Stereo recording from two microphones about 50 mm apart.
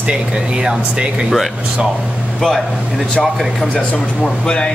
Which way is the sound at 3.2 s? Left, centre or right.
Centre.